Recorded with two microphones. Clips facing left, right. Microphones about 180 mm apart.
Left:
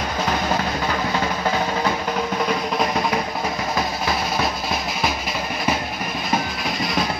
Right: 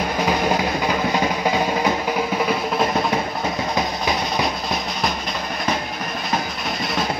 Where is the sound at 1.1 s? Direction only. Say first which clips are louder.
Right 2 dB; 15° right (ahead or behind).